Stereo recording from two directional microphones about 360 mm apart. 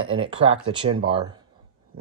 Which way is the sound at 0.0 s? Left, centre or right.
Centre.